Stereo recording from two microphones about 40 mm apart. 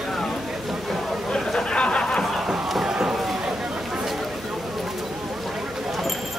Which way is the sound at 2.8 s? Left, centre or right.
Centre.